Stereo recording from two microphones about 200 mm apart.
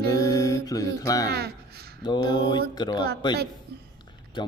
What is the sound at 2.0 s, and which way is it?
Speech, 20° left (ahead or behind).